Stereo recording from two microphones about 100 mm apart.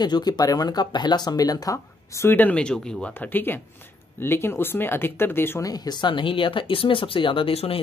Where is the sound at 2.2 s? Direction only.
20° left (ahead or behind).